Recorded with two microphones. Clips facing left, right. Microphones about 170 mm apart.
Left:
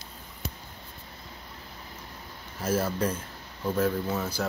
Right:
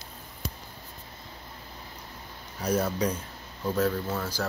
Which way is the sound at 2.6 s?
5° left (ahead or behind).